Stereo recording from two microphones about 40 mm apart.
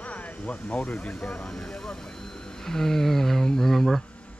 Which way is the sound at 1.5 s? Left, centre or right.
Centre.